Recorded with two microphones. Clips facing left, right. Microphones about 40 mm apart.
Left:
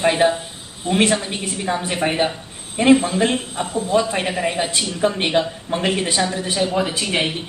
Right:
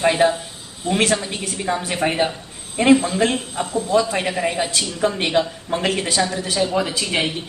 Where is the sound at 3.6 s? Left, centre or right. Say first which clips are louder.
Right 1 dB; left.